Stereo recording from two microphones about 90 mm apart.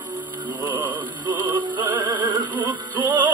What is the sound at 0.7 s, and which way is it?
Music, 45° right (ahead or behind).